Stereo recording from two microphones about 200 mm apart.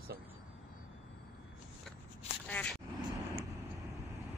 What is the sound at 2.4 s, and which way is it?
Speech, 10° left (ahead or behind).